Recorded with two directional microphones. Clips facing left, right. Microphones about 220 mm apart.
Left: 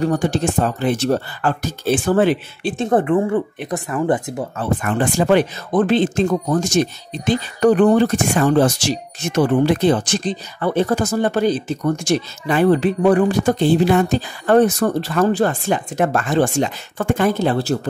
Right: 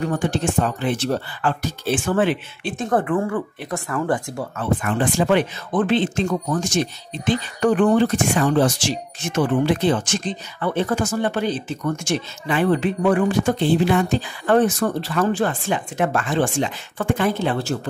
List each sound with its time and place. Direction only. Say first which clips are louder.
0.0 s speech: left 4 dB; 40° left (ahead or behind)
2.9 s speech: left 4 dB; 20° left (ahead or behind)
4.8 s speech: left 3 dB; 45° left (ahead or behind)